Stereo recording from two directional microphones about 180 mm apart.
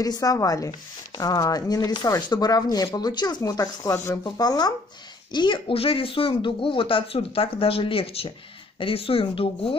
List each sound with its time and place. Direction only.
0.0 s speech: 20° left (ahead or behind)